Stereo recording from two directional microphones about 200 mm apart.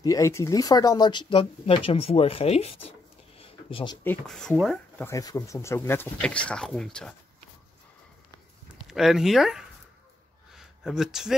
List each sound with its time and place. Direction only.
0.0 s speech: 15° left (ahead or behind)
3.3 s a sound: 25° left (ahead or behind)
4.0 s speech: 5° left (ahead or behind)
5.0 s speech: 15° left (ahead or behind)
8.8 s speech: centre (ahead or behind)
10.5 s a sound: centre (ahead or behind)